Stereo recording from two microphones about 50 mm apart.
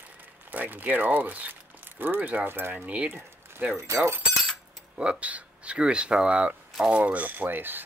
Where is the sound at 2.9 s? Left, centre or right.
Right.